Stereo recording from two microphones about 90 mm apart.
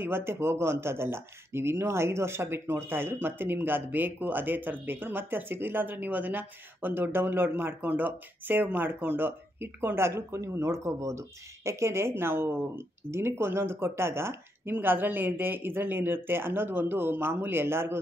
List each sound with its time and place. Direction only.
0.0 s speech: 25° right (ahead or behind)